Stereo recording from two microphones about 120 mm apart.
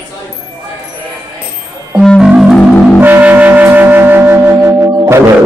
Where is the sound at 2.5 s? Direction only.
10° left (ahead or behind).